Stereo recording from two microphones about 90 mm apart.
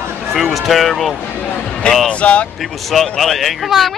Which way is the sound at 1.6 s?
10° left (ahead or behind).